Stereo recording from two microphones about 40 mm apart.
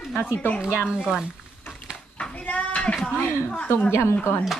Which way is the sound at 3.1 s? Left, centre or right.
Left.